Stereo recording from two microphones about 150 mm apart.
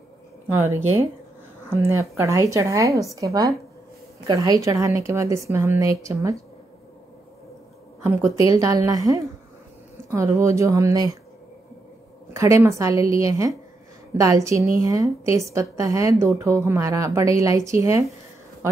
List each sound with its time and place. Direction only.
0.5 s a woman's voice: 15° right (ahead or behind)
8.0 s a woman's voice: 20° right (ahead or behind)
12.4 s a woman's voice: 20° right (ahead or behind)